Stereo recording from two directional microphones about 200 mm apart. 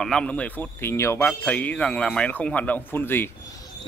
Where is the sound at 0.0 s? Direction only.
5° left (ahead or behind).